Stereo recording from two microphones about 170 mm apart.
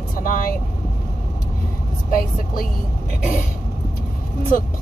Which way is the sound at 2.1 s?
55° left (ahead or behind).